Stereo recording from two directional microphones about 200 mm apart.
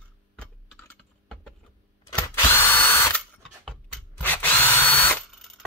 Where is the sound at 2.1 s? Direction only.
10° left (ahead or behind).